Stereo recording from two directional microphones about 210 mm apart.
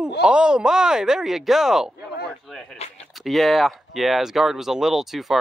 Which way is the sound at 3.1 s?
Centre (ahead or behind).